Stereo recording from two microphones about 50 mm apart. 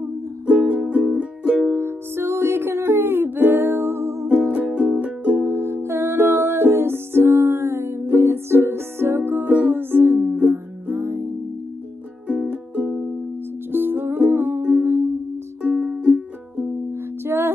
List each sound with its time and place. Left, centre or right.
0.5 s music: right
1.7 s music: right
4.7 s music: right
5.4 s music: right
9.4 s music: right
9.8 s music: right
11.0 s music: right
12.3 s music: right
13.7 s music: right
15.6 s music: right
17.2 s music: right